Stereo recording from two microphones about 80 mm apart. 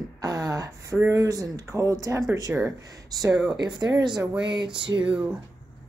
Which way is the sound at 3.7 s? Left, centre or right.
Right.